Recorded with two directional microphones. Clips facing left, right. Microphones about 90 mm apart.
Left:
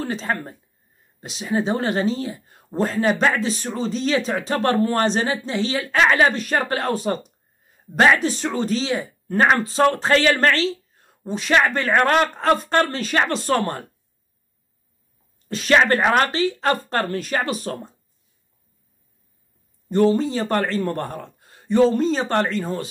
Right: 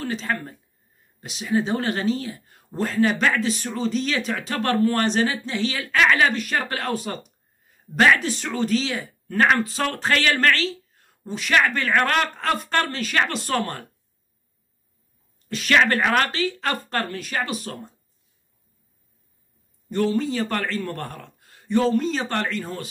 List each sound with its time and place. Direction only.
0.0 s speech: 25° left (ahead or behind)
15.4 s speech: 30° left (ahead or behind)
19.9 s speech: 30° left (ahead or behind)